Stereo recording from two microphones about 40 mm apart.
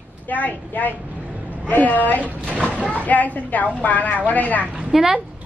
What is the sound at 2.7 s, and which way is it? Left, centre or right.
Speech, right.